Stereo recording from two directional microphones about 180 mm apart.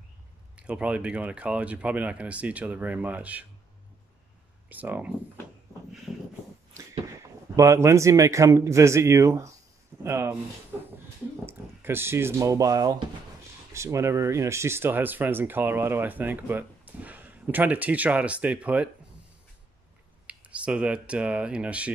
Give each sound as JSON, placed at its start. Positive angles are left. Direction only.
{"t": 0.6, "sound": "speech", "side_deg": -5}
{"t": 4.6, "sound": "speech", "side_deg": -10}
{"t": 6.1, "sound": "a sound", "side_deg": 0}
{"t": 7.5, "sound": "speech", "side_deg": -15}
{"t": 11.4, "sound": "speech", "side_deg": -15}
{"t": 20.2, "sound": "speech", "side_deg": -5}